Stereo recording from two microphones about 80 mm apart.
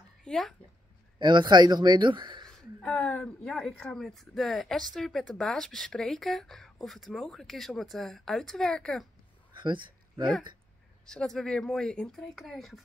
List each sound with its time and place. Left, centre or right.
0.2 s speech: centre
1.2 s speech: right
2.4 s a sound: centre
3.4 s speech: centre
9.6 s a sound: right
11.1 s speech: centre
12.4 s speech: centre